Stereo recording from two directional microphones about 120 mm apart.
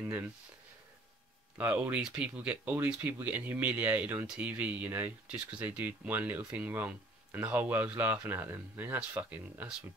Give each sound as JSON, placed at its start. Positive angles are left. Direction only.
{"t": 1.6, "sound": "speech", "side_deg": -10}